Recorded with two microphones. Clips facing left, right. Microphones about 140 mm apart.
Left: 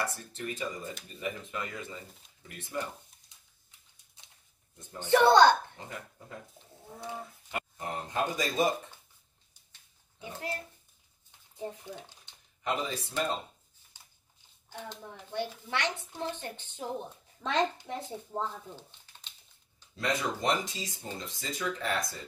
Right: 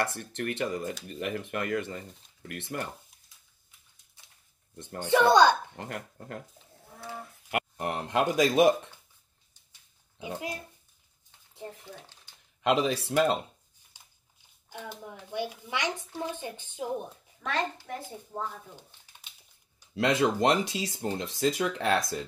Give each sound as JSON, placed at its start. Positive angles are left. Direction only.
{"t": 0.0, "sound": "speech", "side_deg": -85}
{"t": 4.7, "sound": "speech", "side_deg": -70}
{"t": 5.1, "sound": "speech", "side_deg": -15}
{"t": 5.8, "sound": "speech", "side_deg": -70}
{"t": 6.9, "sound": "livestock", "side_deg": 20}
{"t": 7.5, "sound": "speech", "side_deg": -70}
{"t": 10.1, "sound": "speech", "side_deg": -15}
{"t": 11.6, "sound": "speech", "side_deg": 15}
{"t": 12.6, "sound": "speech", "side_deg": -85}
{"t": 14.9, "sound": "speech", "side_deg": -15}
{"t": 17.4, "sound": "a child's voice", "side_deg": 25}
{"t": 20.0, "sound": "speech", "side_deg": -75}